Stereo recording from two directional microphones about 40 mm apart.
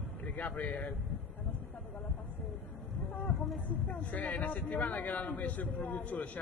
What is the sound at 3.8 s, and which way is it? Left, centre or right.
A man's voice, left.